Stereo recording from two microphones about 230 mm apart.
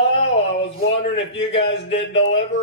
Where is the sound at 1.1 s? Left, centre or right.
Left.